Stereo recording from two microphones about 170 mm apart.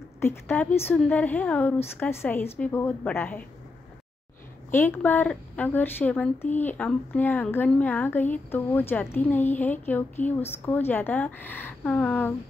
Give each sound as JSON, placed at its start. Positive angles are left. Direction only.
{"t": 0.2, "sound": "speech", "side_deg": 15}
{"t": 4.6, "sound": "speech", "side_deg": 10}